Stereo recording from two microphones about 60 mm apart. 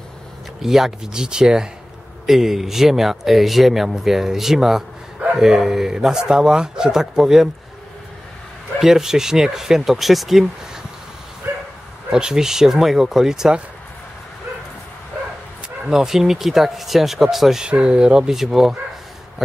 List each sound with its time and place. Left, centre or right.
0.6 s speech: centre
8.8 s speech: centre
11.4 s bow-wow: right
12.1 s speech: centre
15.9 s speech: centre
17.6 s speech: centre